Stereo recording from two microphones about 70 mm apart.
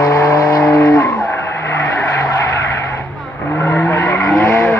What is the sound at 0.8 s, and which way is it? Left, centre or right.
Vehicle, left.